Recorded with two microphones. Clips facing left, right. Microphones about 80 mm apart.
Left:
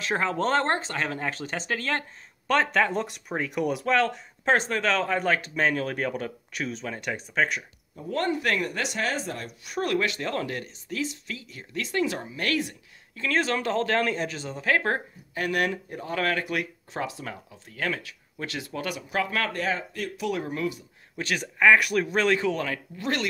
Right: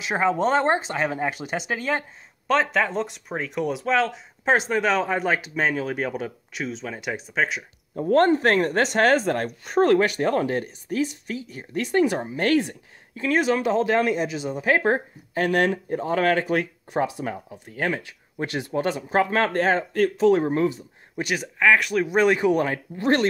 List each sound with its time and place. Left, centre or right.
0.0 s speech: centre
2.4 s speech: centre
7.9 s speech: right
9.7 s speech: right
13.4 s speech: centre; by 20.2 s right
20.2 s speech: right
21.4 s speech: centre
22.0 s speech: centre